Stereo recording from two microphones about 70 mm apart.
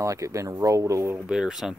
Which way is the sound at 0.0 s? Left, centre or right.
Right.